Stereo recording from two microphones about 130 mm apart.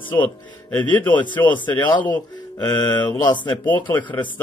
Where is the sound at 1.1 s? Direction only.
35° left (ahead or behind).